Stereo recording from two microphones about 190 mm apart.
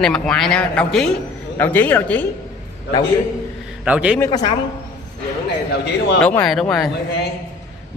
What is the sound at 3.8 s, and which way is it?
Speech, 5° right (ahead or behind).